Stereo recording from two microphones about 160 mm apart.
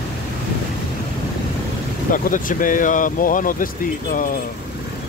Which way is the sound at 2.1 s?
55° left (ahead or behind).